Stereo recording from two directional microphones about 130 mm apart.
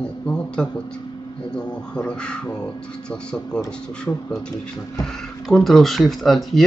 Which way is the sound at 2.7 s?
5° left (ahead or behind).